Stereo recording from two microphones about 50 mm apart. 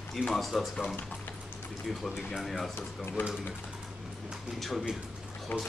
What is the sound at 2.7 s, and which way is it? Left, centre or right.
Speech, left.